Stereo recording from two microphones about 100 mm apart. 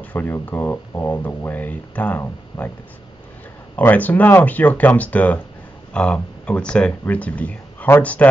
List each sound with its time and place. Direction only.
0.0 s speech: 20° left (ahead or behind)
2.5 s speech: 35° left (ahead or behind)
3.7 s speech: 15° left (ahead or behind)